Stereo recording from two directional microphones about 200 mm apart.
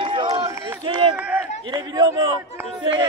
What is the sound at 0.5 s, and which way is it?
Run, 15° right (ahead or behind).